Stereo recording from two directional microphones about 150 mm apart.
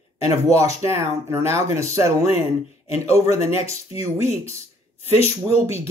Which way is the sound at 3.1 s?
45° left (ahead or behind).